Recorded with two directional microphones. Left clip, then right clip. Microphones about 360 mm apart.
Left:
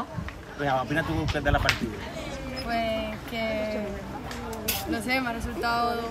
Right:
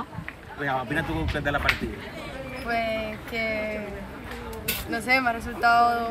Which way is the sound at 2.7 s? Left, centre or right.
Centre.